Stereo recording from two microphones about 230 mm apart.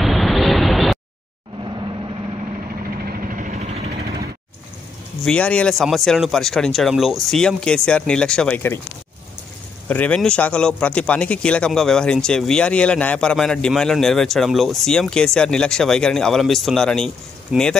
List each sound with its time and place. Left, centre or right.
0.0 s vehicle: centre
1.6 s vehicle: right
3.1 s vehicle: right
5.2 s a man's voice: centre
9.8 s a man's voice: centre